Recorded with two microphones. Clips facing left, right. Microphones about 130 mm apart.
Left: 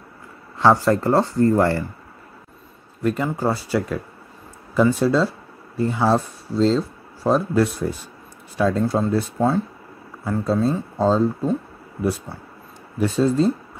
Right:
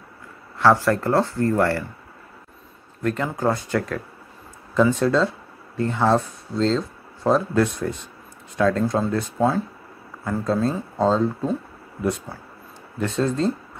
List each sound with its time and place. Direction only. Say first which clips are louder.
0.6 s speech: left 1 dB; 15° left (ahead or behind)
3.0 s speech: left 2 dB; 10° left (ahead or behind)
10.2 s speech: left 2 dB; 5° left (ahead or behind)